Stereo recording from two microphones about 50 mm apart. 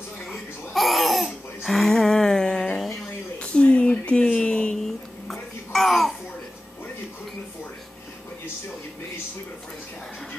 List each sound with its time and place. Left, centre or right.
0.3 s laughter: centre
3.3 s a sound: left
4.8 s babbling: centre